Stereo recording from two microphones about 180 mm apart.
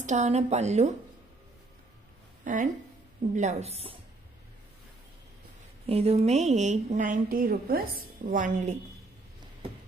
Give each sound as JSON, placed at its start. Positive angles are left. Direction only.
{"t": 0.0, "sound": "speech", "side_deg": -40}
{"t": 2.4, "sound": "a woman's voice", "side_deg": -45}
{"t": 5.9, "sound": "speech", "side_deg": -35}